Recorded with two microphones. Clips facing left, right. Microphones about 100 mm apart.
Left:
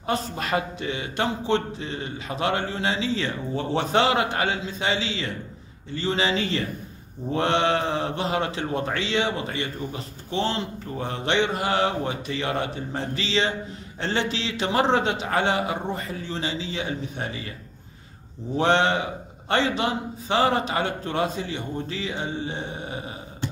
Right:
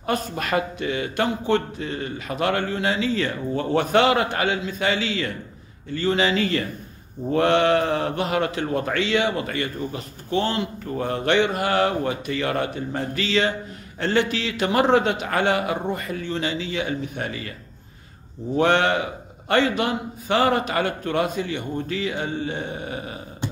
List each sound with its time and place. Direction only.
0.0 s a man's voice: 25° left (ahead or behind)
1.9 s speech: 45° right (ahead or behind)
2.2 s a man's voice: 25° left (ahead or behind)
3.2 s speech: 45° right (ahead or behind)
3.7 s a man's voice: 25° left (ahead or behind)
18.6 s a man's voice: 25° left (ahead or behind)